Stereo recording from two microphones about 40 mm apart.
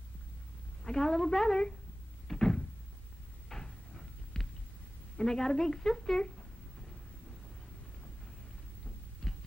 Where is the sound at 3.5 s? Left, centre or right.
Centre.